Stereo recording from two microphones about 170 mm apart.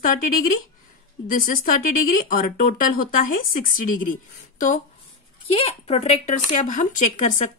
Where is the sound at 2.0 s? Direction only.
55° left (ahead or behind).